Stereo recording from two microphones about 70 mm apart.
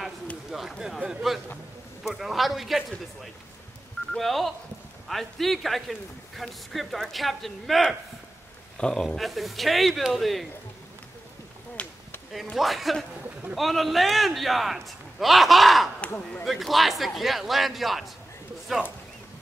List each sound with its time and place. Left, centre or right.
0.5 s a man's voice: centre
4.1 s a man's voice: centre
9.0 s a man's voice: centre
11.8 s chop: centre
12.5 s a man's voice: centre